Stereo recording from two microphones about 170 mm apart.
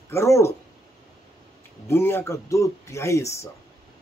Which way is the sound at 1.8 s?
15° left (ahead or behind).